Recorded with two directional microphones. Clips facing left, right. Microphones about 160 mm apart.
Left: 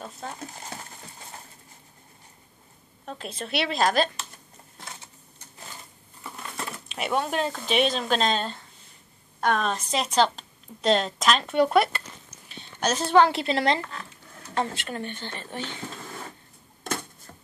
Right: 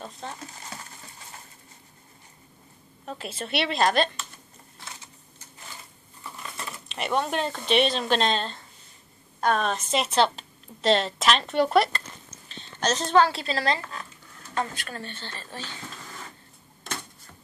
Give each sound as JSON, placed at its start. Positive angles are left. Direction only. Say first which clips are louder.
{"t": 0.2, "sound": "speech", "louder": "left 1 dB", "side_deg": 5}
{"t": 3.1, "sound": "speech", "louder": "even", "side_deg": -5}
{"t": 6.9, "sound": "speech", "louder": "even", "side_deg": 5}
{"t": 9.6, "sound": "speech", "louder": "right 1 dB", "side_deg": 0}
{"t": 13.2, "sound": "speech", "louder": "left 2 dB", "side_deg": 20}